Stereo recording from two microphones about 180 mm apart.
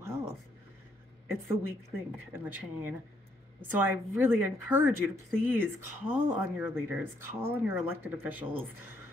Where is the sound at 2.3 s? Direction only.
10° right (ahead or behind).